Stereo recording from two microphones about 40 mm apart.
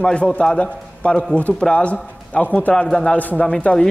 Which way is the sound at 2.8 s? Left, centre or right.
Centre.